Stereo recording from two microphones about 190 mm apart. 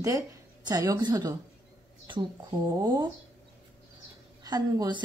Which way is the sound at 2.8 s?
25° right (ahead or behind).